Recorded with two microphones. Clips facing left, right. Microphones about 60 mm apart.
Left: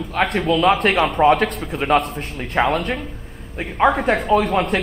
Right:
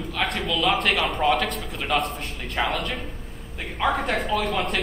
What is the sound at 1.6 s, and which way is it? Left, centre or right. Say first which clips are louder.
Speech: left 8 dB; left.